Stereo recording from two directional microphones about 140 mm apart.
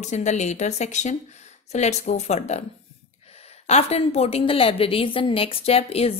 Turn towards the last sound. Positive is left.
turn(degrees=45)  # may be behind; listen again after turning